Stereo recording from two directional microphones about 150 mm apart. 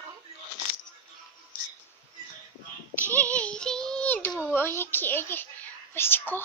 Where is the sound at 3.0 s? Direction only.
10° left (ahead or behind).